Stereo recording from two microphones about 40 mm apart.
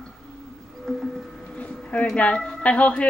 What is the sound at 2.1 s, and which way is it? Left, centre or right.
Speech, left.